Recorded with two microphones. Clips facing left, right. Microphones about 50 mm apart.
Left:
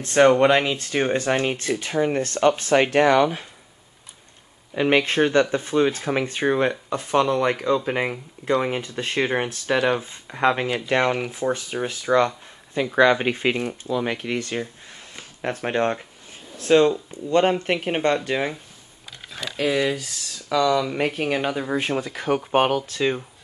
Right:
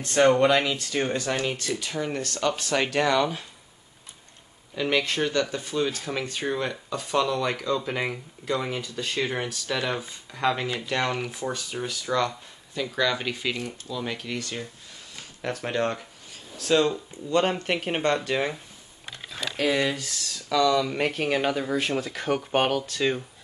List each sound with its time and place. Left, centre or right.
0.0 s speech: left
4.7 s speech: left
19.5 s speech: centre
20.0 s a sound: left
20.5 s speech: centre
21.6 s speech: centre